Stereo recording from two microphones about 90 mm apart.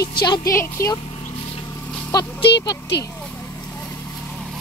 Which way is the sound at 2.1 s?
45° left (ahead or behind).